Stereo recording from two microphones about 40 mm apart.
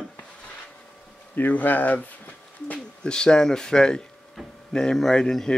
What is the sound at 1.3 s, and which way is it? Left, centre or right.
Speech, left.